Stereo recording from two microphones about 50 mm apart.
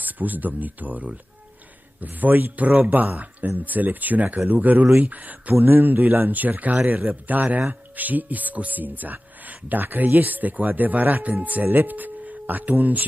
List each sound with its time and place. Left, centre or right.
0.0 s speech: right